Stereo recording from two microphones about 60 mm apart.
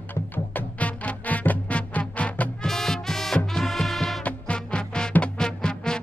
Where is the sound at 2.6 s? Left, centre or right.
Centre.